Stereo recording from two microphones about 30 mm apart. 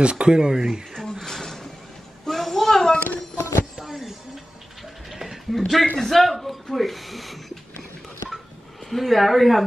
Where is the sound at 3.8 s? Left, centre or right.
Centre.